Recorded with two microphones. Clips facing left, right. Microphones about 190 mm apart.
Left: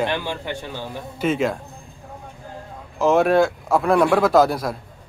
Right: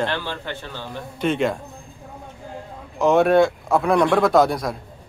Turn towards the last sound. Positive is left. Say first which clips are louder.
# left 1 dB
turn(degrees=0)  # may be behind; listen again after turning